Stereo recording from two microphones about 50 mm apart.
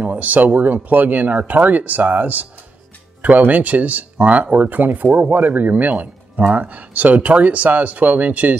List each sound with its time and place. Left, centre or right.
0.0 s speech: right